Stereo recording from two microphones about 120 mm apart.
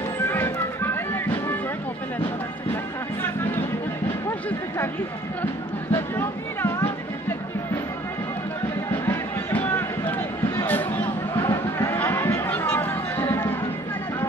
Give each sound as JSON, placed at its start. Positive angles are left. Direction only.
{"t": 0.3, "sound": "music", "side_deg": 20}
{"t": 2.7, "sound": "music", "side_deg": 15}
{"t": 5.9, "sound": "music", "side_deg": 20}
{"t": 9.0, "sound": "a sound", "side_deg": 15}
{"t": 11.4, "sound": "music", "side_deg": 20}